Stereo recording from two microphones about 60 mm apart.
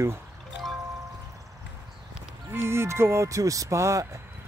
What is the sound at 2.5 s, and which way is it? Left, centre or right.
Speech, right.